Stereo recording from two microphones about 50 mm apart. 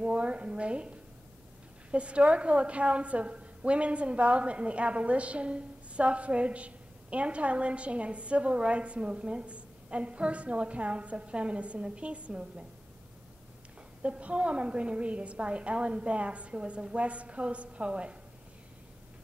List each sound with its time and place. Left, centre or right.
0.0 s a woman's voice: right
14.0 s a woman's voice: right